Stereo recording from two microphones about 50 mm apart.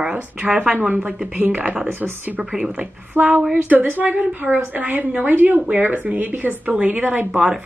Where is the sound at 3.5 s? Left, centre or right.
Right.